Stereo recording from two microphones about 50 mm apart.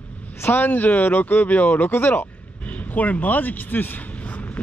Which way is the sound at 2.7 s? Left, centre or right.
Left.